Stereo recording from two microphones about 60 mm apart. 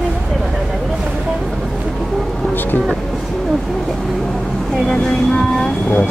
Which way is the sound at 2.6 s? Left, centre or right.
Left.